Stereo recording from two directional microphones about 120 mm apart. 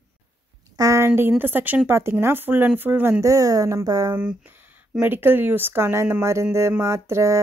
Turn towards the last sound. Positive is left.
turn(degrees=-25)  # may be behind; listen again after turning